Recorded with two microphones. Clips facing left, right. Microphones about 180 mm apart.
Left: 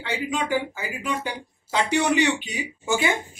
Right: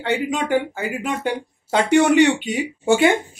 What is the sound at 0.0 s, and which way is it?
Speech, 55° right (ahead or behind).